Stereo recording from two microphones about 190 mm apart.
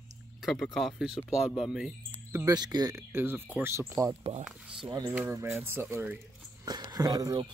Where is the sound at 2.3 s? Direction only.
15° right (ahead or behind).